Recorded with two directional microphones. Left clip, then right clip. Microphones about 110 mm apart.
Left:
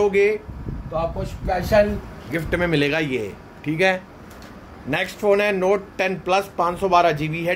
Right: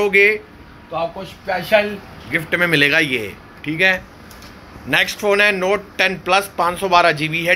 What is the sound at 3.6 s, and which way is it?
Speech, 20° left (ahead or behind).